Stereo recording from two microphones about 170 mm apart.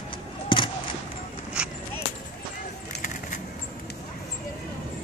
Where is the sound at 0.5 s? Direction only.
30° left (ahead or behind).